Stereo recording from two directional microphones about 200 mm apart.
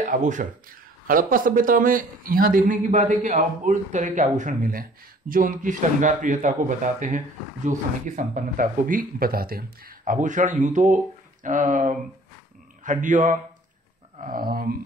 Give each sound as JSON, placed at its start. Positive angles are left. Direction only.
{"t": 0.0, "sound": "a man's voice", "side_deg": -40}